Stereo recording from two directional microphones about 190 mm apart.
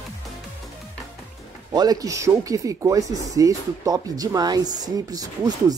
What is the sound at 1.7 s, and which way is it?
Speech, 20° right (ahead or behind).